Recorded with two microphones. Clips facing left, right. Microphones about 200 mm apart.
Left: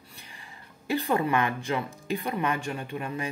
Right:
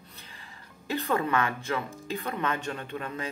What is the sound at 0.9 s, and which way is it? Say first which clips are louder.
Speech: left 2 dB; 15° left (ahead or behind).